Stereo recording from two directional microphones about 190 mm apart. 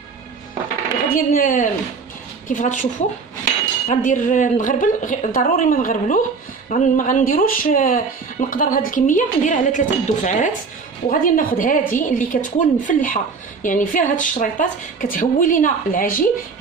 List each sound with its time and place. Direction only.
1.1 s a woman's voice: 45° left (ahead or behind)